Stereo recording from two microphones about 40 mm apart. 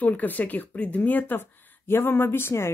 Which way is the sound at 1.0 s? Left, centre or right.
Left.